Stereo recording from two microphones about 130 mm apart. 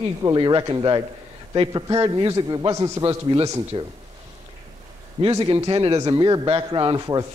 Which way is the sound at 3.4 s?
25° right (ahead or behind).